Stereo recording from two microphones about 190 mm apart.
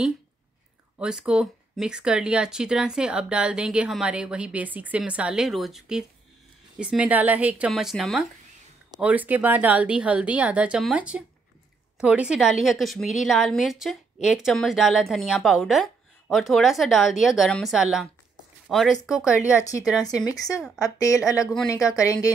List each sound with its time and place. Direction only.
0.9 s a woman's voice: 5° right (ahead or behind)
19.4 s speech: 15° left (ahead or behind)